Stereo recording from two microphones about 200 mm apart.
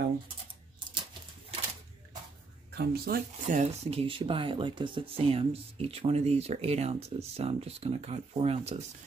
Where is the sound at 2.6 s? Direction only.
50° right (ahead or behind).